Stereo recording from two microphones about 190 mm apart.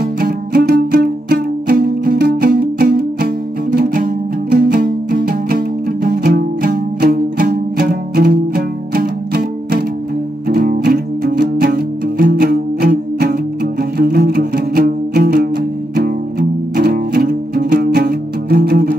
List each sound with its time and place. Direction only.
0.0 s music: 50° right (ahead or behind)